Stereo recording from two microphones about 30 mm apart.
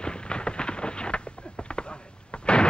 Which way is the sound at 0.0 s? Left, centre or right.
Left.